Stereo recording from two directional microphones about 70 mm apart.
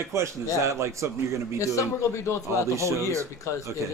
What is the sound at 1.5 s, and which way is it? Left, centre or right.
Speech, left.